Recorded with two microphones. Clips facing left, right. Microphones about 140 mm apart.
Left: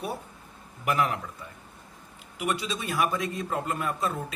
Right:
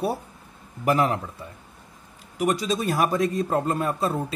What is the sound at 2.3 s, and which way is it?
A man's voice, 40° right (ahead or behind).